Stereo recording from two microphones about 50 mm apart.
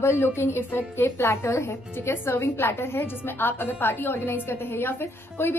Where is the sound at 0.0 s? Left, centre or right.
Left.